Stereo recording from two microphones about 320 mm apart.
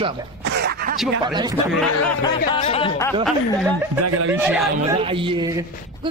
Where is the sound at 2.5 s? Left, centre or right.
Centre.